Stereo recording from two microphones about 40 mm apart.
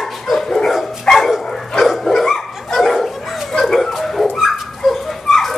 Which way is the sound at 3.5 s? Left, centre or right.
Centre.